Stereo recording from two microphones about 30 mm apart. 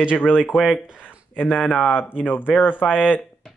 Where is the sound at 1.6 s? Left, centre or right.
Left.